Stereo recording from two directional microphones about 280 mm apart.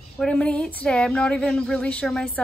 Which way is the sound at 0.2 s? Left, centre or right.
Centre.